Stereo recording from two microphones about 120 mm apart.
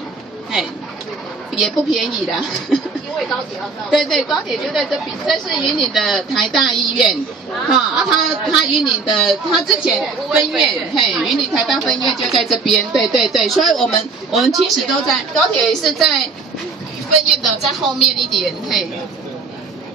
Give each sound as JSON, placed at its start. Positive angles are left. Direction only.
{"t": 1.5, "sound": "a woman's voice", "side_deg": 0}
{"t": 17.4, "sound": "a woman's voice", "side_deg": 0}